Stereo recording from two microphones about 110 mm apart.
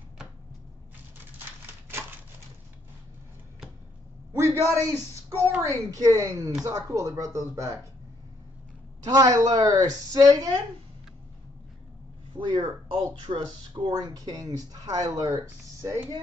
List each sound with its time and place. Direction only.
4.3 s a man's voice: 25° right (ahead or behind)
9.0 s speech: 35° right (ahead or behind)
12.4 s speech: 45° right (ahead or behind); by 16.1 s 25° right (ahead or behind)